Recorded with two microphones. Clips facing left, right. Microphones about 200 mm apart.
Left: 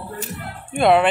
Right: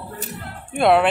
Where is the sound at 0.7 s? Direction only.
Centre (ahead or behind).